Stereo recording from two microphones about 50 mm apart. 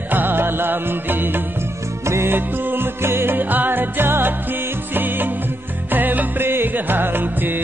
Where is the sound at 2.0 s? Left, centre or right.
Right.